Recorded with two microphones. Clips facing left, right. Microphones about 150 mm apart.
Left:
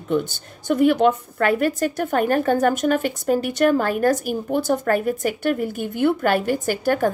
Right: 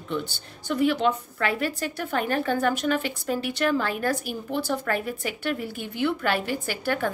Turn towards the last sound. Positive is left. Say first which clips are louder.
# left 7 dB
turn(degrees=45)  # may be behind; listen again after turning